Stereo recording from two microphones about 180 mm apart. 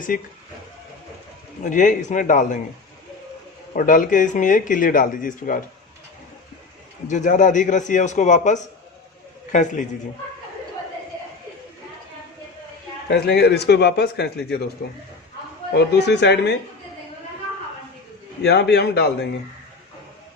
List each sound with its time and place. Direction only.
1.6 s speech: 45° left (ahead or behind)
3.7 s speech: 50° left (ahead or behind)
7.1 s speech: 45° left (ahead or behind)
13.1 s a man's voice: 65° left (ahead or behind)
15.7 s speech: 70° left (ahead or behind)
18.4 s speech: 70° left (ahead or behind)